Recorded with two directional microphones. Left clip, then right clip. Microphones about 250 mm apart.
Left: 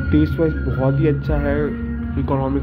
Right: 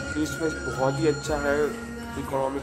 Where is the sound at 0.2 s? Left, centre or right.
Centre.